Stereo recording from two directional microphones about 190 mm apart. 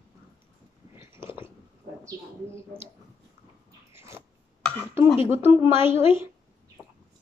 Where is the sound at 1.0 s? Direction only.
15° right (ahead or behind).